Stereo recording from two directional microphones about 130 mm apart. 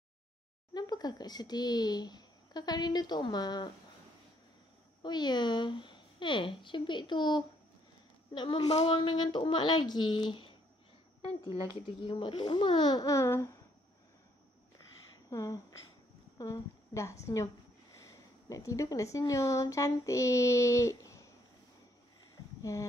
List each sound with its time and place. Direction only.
0.7 s speech: 30° left (ahead or behind)
5.0 s speech: 35° left (ahead or behind)
11.5 s speech: 40° left (ahead or behind); by 13.5 s 20° left (ahead or behind)
15.2 s a woman's voice: 25° left (ahead or behind)
18.0 s a sound: 25° left (ahead or behind)
22.6 s speech: 25° left (ahead or behind)